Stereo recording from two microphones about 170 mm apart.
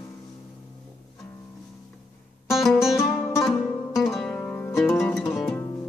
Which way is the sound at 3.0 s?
15° left (ahead or behind).